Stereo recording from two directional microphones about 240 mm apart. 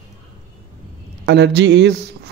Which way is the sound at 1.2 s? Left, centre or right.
Right.